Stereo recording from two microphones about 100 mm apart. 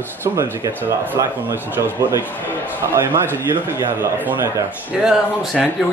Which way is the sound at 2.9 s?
25° right (ahead or behind).